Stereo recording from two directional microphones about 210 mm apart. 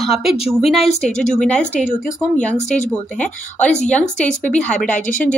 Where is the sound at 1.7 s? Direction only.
40° left (ahead or behind).